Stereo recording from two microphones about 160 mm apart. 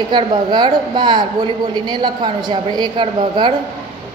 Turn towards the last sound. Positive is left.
turn(degrees=-30)  # may be behind; listen again after turning